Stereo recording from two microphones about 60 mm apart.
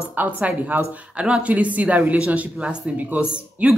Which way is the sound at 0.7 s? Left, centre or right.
Right.